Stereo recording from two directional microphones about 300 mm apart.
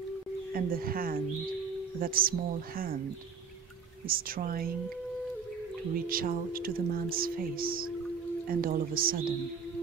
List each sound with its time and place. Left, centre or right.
0.5 s speech: right
4.1 s speech: right
6.0 s speech: right